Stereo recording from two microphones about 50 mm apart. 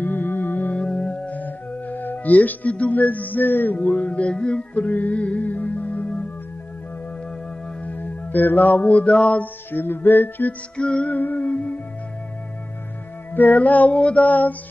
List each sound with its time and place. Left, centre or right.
0.0 s music: left
0.7 s music: left
1.3 s music: left
7.8 s music: left
9.7 s music: left
10.8 s music: left
11.1 s music: left
13.3 s music: left